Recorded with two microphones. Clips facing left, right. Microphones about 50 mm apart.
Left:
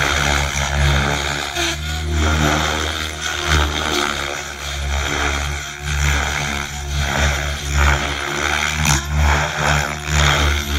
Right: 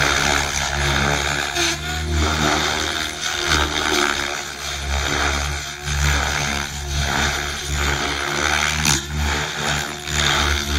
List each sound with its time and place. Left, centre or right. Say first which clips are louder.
0.0 s vehicle: even; centre
1.6 s vehicle: even; centre
2.2 s a sound: left 2 dB; left; by 4.3 s centre
5.0 s vehicle: left 1 dB; centre
7.1 s vehicle: left 1 dB; left
7.7 s vehicle: left 6 dB; left
8.0 s vehicle: even; centre
8.9 s vehicle: left 4 dB; left
10.3 s a sound: left 1 dB; centre